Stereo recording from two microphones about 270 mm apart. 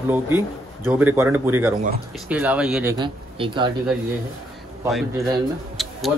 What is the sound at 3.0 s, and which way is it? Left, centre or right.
Speech, centre.